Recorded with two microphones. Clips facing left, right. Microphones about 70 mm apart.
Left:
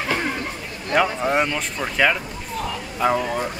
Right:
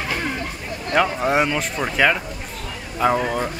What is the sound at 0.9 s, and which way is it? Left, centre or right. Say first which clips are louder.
Speech: right 1 dB; centre.